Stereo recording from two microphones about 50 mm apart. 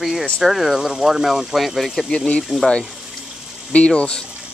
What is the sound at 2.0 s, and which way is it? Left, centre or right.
Speech, left.